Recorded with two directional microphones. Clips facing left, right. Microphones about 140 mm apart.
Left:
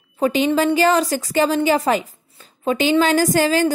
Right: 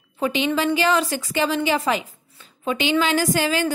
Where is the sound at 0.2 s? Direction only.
40° left (ahead or behind).